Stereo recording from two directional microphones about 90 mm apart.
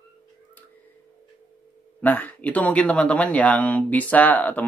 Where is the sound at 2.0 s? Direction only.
20° left (ahead or behind).